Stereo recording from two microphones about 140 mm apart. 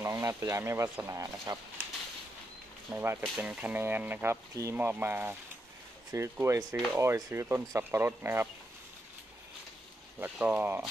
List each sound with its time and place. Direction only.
0.0 s speech: 20° right (ahead or behind)
2.9 s speech: 15° right (ahead or behind)
10.2 s speech: 15° right (ahead or behind)